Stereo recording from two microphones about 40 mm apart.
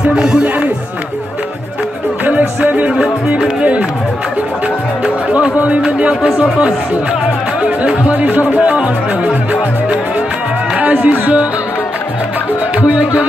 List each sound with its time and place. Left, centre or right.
0.0 s speech: right
2.2 s music: right
5.9 s music: right
7.6 s speech: right
12.8 s music: right